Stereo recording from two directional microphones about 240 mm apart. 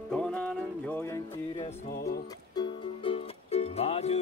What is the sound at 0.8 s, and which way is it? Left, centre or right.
Music, centre.